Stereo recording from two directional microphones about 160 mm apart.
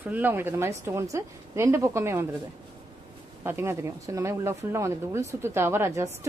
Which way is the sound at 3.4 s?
15° right (ahead or behind).